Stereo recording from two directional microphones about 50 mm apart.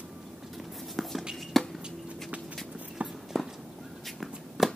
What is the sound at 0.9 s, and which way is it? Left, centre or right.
Shuffle, centre.